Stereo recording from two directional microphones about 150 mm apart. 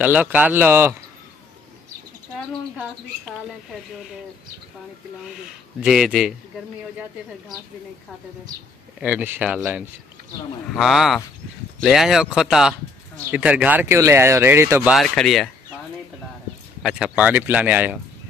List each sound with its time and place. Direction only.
0.0 s speech: 10° right (ahead or behind)
5.8 s speech: 5° right (ahead or behind)
9.0 s speech: 10° right (ahead or behind)
14.9 s speech: centre (ahead or behind)
16.8 s speech: 5° right (ahead or behind)